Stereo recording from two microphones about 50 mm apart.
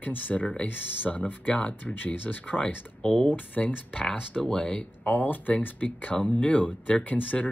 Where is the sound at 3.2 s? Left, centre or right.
Left.